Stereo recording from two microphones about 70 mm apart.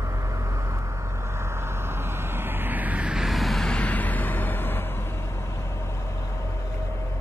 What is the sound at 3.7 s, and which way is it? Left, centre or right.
Music, centre.